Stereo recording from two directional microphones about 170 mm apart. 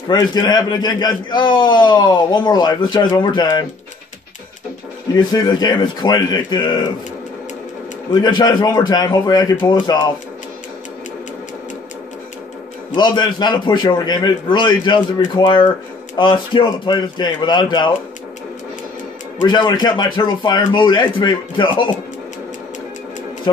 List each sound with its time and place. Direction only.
0.1 s a man's voice: 25° left (ahead or behind)
5.1 s a man's voice: 25° left (ahead or behind)
8.1 s a man's voice: 25° left (ahead or behind)
12.9 s a man's voice: 25° left (ahead or behind)
19.4 s a man's voice: 25° left (ahead or behind)
23.5 s speech: 25° left (ahead or behind)